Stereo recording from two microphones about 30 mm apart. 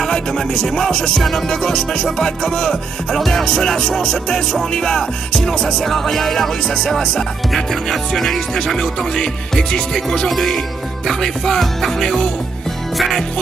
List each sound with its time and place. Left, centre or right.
0.0 s music: centre
0.7 s music: centre
8.7 s music: left
10.3 s music: centre